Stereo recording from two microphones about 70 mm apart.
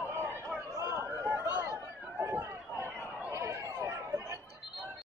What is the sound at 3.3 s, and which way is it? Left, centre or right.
Chatter, right.